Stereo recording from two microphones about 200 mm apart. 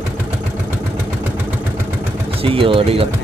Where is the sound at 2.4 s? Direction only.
30° right (ahead or behind).